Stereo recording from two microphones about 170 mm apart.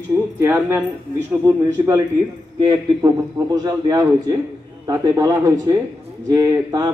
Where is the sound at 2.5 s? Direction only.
25° right (ahead or behind).